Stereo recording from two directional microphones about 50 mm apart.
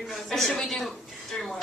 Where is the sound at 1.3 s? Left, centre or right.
Centre.